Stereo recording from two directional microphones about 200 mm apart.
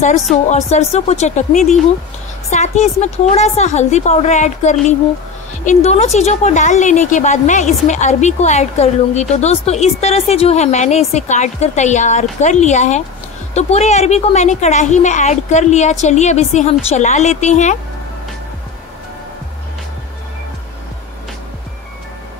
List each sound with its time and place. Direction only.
0.5 s a woman's voice: 35° left (ahead or behind)